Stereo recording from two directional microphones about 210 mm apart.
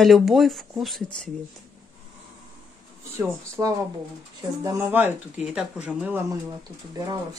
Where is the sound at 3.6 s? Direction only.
10° right (ahead or behind).